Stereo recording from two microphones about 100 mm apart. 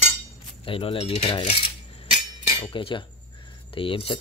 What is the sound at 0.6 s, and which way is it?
Speech, 60° left (ahead or behind).